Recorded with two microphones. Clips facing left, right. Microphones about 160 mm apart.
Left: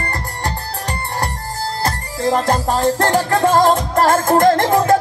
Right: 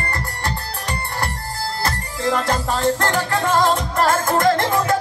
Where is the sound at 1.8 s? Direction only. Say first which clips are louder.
Left 3 dB; 40° left (ahead or behind).